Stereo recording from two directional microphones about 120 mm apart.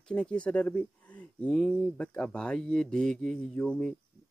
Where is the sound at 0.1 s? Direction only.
10° left (ahead or behind).